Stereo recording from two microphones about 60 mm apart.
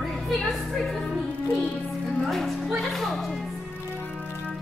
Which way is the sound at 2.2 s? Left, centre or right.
Centre.